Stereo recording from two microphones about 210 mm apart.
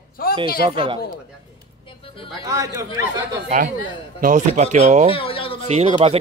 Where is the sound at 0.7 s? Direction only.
25° right (ahead or behind).